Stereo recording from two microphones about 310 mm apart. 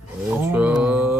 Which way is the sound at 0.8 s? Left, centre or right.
Centre.